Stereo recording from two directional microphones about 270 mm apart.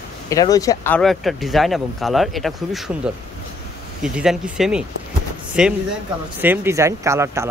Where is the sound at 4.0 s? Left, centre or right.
Centre.